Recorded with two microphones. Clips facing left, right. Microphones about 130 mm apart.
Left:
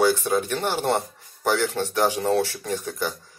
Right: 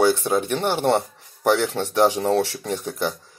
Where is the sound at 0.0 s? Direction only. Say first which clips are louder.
Right 2 dB; 20° right (ahead or behind).